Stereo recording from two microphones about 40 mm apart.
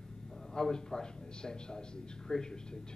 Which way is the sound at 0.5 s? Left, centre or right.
Centre.